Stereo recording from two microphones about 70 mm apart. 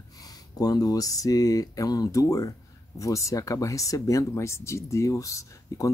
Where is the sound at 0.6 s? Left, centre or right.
Left.